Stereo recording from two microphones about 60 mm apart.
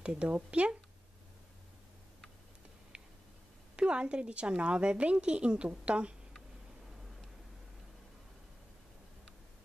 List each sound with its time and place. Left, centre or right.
0.0 s speech: centre
2.9 s a sound: right
3.7 s a woman's voice: centre